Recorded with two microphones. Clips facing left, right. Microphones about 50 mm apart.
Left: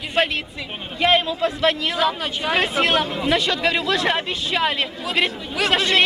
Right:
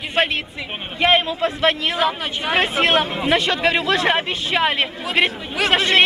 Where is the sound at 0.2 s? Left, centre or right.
Centre.